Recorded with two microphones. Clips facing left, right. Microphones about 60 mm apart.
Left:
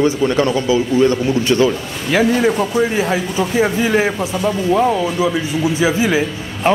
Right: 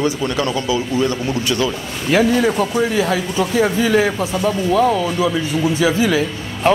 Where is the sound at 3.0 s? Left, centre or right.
Centre.